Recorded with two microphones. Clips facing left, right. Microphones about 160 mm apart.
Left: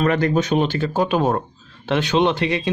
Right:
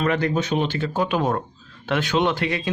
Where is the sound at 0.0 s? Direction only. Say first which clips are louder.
Left 3 dB; 45° left (ahead or behind).